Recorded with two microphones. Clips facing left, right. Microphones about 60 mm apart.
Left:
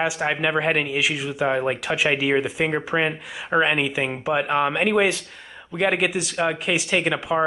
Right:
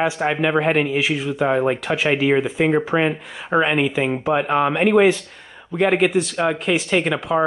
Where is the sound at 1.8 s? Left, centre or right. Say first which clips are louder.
Right 2 dB; centre.